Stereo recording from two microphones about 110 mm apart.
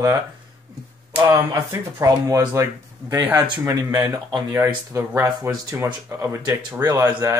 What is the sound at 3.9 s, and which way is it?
Speech, 40° right (ahead or behind).